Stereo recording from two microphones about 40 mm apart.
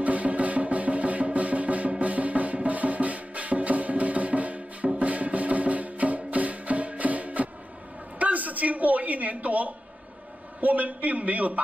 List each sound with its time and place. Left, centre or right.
0.0 s music: right
8.2 s a sound: right
10.6 s a man's voice: right